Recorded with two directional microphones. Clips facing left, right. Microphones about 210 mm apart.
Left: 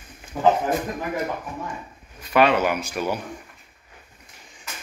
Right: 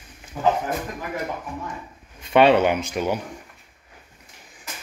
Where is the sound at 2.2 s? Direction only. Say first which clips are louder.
Right 3 dB; 30° right (ahead or behind).